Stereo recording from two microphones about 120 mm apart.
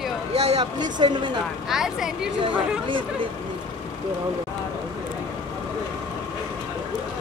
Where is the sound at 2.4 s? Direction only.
45° right (ahead or behind).